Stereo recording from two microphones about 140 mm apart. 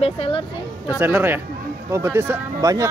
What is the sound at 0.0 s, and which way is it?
Speech, 40° left (ahead or behind).